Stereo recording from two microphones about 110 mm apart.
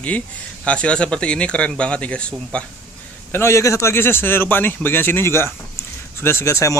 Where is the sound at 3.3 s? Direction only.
25° left (ahead or behind).